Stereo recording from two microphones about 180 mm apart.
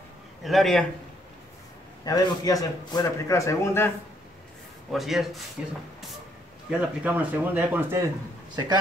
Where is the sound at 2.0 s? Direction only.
20° left (ahead or behind).